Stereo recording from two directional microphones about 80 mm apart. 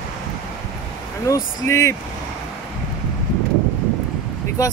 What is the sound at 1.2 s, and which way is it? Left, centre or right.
Speech, left.